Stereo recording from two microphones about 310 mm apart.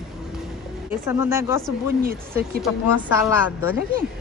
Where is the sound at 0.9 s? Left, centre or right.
Centre.